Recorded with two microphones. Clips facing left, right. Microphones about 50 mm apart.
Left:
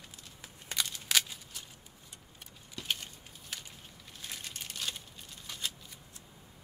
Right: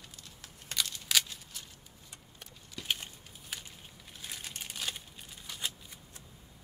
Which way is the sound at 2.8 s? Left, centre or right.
Centre.